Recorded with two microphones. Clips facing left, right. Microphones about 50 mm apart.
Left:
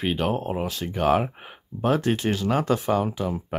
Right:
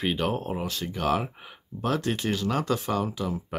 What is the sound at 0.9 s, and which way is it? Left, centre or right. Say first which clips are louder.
Speech: left 5 dB; left.